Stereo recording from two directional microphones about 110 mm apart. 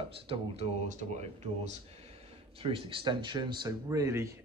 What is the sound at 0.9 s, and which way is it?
Speech, 90° right.